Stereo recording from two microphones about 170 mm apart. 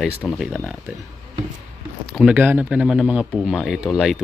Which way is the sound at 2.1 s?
10° right (ahead or behind).